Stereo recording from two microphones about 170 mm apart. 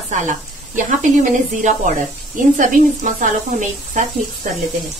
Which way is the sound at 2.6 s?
50° right (ahead or behind).